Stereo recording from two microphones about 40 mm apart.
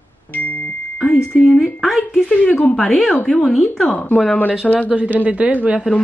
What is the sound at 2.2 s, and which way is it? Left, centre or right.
Speech, left.